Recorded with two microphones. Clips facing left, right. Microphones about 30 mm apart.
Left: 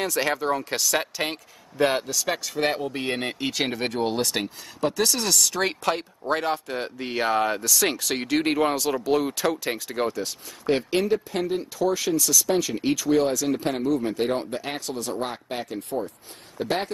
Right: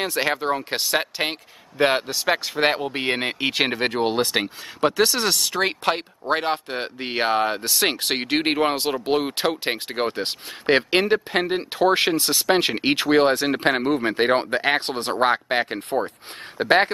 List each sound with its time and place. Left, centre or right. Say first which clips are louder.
0.0 s speech: right 2 dB; right